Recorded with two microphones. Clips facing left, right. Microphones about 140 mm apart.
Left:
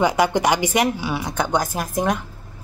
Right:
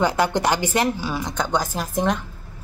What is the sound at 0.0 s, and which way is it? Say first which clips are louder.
Speech: left 2 dB; 10° left (ahead or behind).